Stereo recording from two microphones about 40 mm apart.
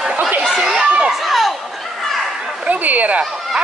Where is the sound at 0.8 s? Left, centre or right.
Right.